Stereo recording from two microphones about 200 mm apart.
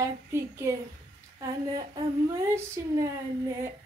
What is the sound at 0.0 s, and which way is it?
A child's voice, 15° right (ahead or behind).